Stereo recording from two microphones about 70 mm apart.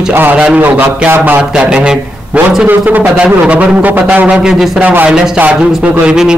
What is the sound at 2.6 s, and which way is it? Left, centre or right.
Speech, right.